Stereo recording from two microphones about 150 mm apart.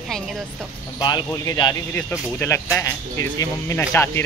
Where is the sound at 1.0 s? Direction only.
25° left (ahead or behind).